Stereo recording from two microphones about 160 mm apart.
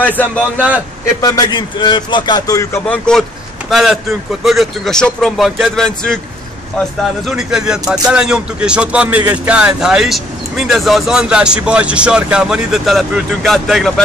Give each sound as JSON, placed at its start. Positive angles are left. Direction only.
{"t": 0.0, "sound": "a man's voice", "side_deg": 10}
{"t": 0.6, "sound": "a man's voice", "side_deg": -10}
{"t": 1.2, "sound": "a man's voice", "side_deg": 25}
{"t": 3.7, "sound": "speech", "side_deg": 0}
{"t": 7.2, "sound": "speech", "side_deg": -5}